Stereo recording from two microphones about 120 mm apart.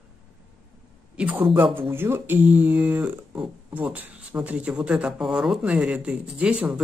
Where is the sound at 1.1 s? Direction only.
15° right (ahead or behind).